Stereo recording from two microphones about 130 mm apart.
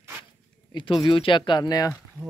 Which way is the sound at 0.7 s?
40° left (ahead or behind).